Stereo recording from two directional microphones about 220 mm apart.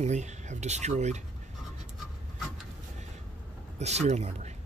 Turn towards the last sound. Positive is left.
turn(degrees=-30)  # may be behind; listen again after turning